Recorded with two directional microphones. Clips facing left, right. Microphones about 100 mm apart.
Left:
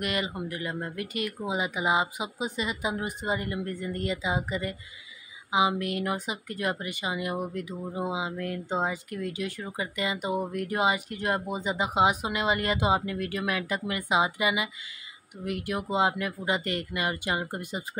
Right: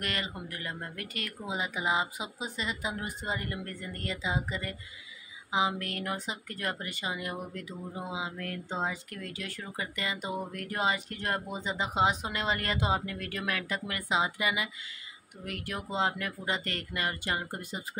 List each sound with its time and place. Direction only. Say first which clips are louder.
0.0 s a woman's voice: left 6 dB; 15° left (ahead or behind)